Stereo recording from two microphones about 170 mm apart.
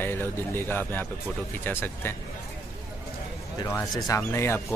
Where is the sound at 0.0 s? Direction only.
15° left (ahead or behind).